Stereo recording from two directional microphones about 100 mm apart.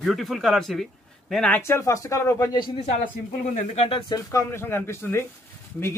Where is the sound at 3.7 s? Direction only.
90° left.